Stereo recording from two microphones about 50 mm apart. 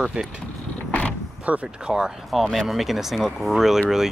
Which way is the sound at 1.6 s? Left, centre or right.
Centre.